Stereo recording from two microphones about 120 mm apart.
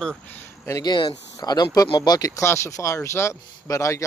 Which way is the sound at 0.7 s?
30° left (ahead or behind).